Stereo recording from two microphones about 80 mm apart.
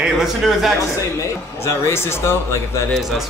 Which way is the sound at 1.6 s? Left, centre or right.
Left.